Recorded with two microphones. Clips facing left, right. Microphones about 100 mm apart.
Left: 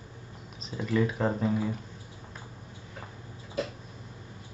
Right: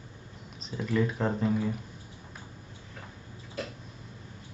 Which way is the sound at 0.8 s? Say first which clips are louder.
Left 1 dB; centre (ahead or behind).